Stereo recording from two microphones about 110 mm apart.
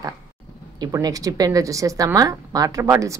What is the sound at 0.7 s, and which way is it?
A woman's voice, 35° right (ahead or behind).